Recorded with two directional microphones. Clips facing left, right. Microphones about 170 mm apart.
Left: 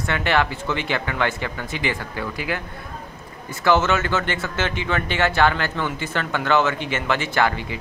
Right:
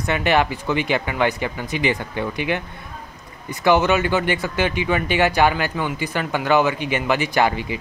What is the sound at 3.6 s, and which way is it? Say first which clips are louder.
Speech: right 2 dB; 15° right (ahead or behind).